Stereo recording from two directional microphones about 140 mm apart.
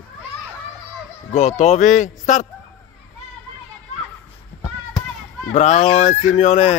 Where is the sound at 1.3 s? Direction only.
55° left (ahead or behind).